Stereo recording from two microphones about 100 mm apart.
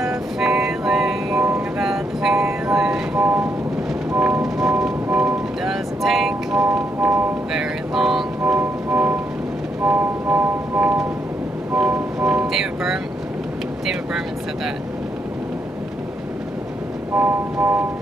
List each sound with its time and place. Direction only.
0.0 s music: 5° right (ahead or behind)
1.8 s train: 5° right (ahead or behind)
4.1 s music: 10° right (ahead or behind)
8.5 s music: 15° right (ahead or behind)
12.2 s vehicle: 10° right (ahead or behind)
17.1 s vehicle: 5° right (ahead or behind)